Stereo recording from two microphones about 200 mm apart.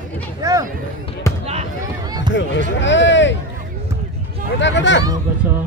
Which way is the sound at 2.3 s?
65° left (ahead or behind).